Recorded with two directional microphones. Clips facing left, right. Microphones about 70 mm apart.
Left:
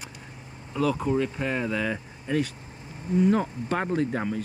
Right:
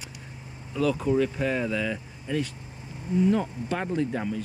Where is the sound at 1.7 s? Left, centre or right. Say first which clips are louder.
Left 1 dB; left.